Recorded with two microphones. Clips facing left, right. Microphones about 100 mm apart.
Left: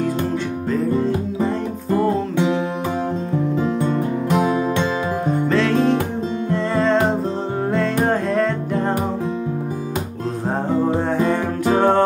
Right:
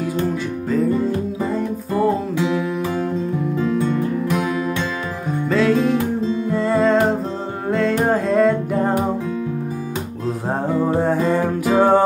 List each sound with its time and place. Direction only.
2.3 s music: 30° left (ahead or behind)
4.3 s music: 25° left (ahead or behind)
5.5 s music: 5° right (ahead or behind)
11.0 s music: 5° right (ahead or behind)